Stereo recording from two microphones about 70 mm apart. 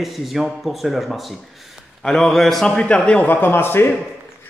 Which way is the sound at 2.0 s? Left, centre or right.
Centre.